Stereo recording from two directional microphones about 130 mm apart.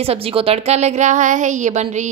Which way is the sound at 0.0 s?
50° right (ahead or behind).